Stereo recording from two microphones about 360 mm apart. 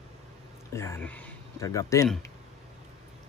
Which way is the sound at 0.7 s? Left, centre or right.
Centre.